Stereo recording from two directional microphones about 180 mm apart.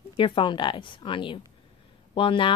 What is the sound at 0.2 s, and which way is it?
Speech, 25° left (ahead or behind).